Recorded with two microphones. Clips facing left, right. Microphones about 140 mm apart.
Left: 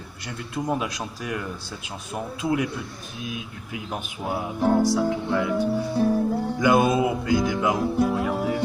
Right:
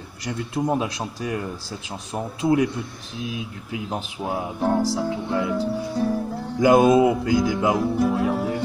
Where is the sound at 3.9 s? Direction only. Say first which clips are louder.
Right 1 dB; 20° right (ahead or behind).